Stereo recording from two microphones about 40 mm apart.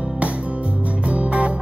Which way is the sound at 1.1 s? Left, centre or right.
Right.